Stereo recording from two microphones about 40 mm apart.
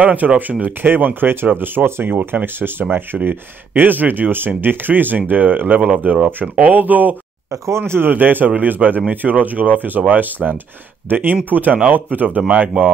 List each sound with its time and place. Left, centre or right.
0.0 s speech: right
0.8 s speech: right
2.0 s speech: right
2.4 s speech: right
6.1 s speech: centre
6.6 s speech: right
7.8 s speech: right
8.1 s speech: right